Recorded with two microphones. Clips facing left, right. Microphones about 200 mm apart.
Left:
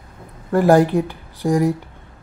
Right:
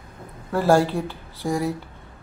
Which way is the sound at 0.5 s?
15° left (ahead or behind).